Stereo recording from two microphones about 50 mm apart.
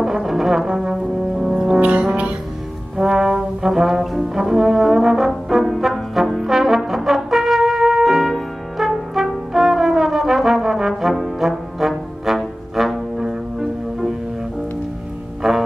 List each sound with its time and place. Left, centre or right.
0.0 s brass instrument: centre
1.8 s brass instrument: right
3.0 s brass instrument: centre
15.4 s music: centre